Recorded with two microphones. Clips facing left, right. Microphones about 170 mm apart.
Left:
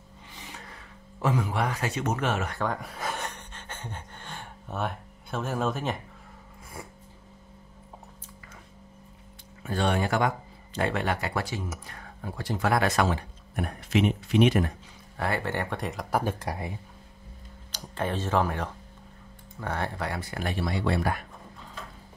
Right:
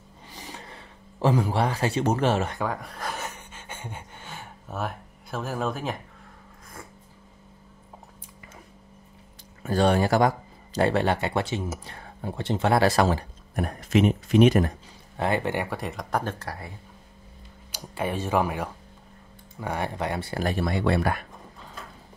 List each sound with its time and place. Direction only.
0.3 s a sound: 35° right (ahead or behind)
2.6 s a sound: centre (ahead or behind)
9.6 s speech: 40° right (ahead or behind)
15.1 s speech: 20° right (ahead or behind)
15.8 s speech: centre (ahead or behind); by 16.7 s 20° left (ahead or behind)
17.6 s speech: 10° right (ahead or behind); by 21.2 s 65° right (ahead or behind)